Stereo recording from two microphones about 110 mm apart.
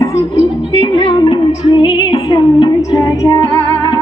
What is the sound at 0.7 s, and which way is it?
Music, 40° left (ahead or behind).